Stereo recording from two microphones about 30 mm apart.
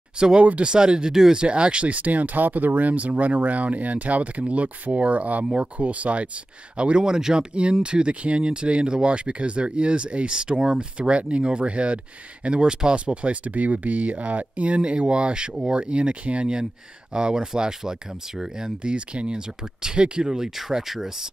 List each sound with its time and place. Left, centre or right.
0.4 s speech: right
0.7 s speech: right
7.0 s speech: right
7.3 s speech: right
17.1 s speech: right
18.8 s speech: right
20.2 s speech: centre